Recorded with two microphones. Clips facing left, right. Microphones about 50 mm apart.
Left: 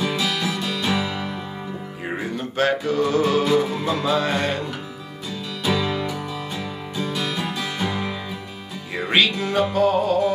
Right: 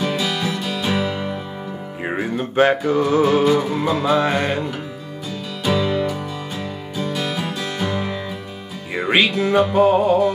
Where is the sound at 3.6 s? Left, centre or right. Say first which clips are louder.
Right 4 dB; centre.